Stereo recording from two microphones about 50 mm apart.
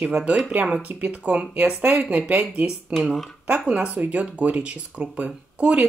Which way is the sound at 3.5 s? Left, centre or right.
Right.